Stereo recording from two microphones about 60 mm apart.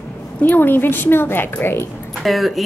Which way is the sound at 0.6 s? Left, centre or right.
Left.